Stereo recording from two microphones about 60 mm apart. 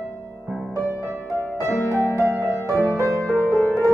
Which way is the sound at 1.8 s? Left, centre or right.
Left.